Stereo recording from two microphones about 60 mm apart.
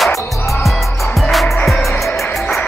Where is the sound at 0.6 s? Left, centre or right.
Centre.